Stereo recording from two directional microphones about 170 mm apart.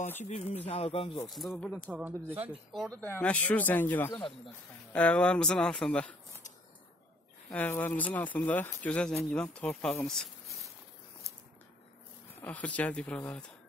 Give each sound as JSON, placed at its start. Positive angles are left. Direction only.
{"t": 0.2, "sound": "speech", "side_deg": 40}
{"t": 1.3, "sound": "speech", "side_deg": 0}
{"t": 1.9, "sound": "speech", "side_deg": -10}
{"t": 2.7, "sound": "speech", "side_deg": 0}
{"t": 3.0, "sound": "speech", "side_deg": 10}
{"t": 7.4, "sound": "speech", "side_deg": 10}
{"t": 12.4, "sound": "speech", "side_deg": 10}